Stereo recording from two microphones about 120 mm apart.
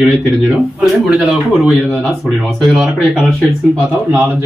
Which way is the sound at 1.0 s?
Centre (ahead or behind).